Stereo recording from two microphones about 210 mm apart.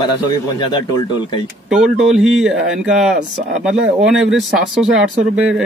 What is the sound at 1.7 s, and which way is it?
Speech, 5° right (ahead or behind).